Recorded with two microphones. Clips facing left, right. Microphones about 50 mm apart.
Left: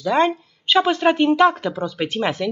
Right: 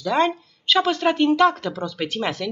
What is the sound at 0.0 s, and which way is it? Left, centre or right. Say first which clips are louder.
Speech: left 2 dB; centre.